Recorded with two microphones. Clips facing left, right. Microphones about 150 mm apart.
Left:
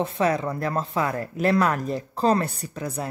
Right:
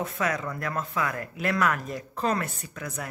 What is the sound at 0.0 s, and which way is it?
Speech, 30° left (ahead or behind).